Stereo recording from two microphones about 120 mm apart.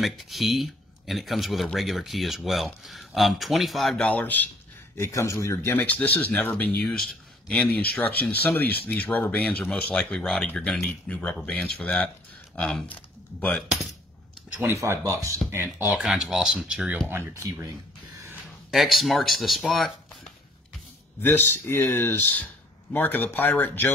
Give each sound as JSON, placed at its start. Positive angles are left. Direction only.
{"t": 0.0, "sound": "speech", "side_deg": 0}
{"t": 14.5, "sound": "speech", "side_deg": -20}
{"t": 15.5, "sound": "speech", "side_deg": -15}
{"t": 17.1, "sound": "speech", "side_deg": -25}
{"t": 18.7, "sound": "speech", "side_deg": 0}
{"t": 21.2, "sound": "speech", "side_deg": 20}